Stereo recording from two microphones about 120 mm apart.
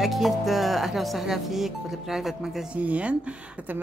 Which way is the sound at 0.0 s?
Centre (ahead or behind).